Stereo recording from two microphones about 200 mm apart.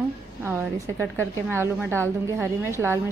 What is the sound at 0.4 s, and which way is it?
A woman's voice, 10° right (ahead or behind).